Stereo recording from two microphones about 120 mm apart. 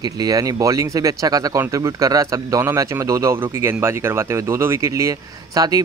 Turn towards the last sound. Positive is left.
turn(degrees=-30)  # may be behind; listen again after turning